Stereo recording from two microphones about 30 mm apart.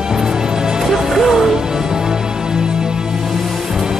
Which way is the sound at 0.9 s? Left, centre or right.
Centre.